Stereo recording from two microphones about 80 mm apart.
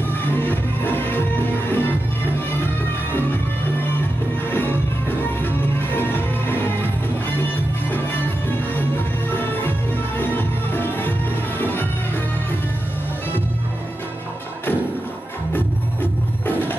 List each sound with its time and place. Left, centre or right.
0.3 s music: left
9.3 s music: left
16.4 s music: left